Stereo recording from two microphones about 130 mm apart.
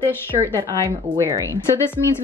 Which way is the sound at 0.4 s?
30° right (ahead or behind).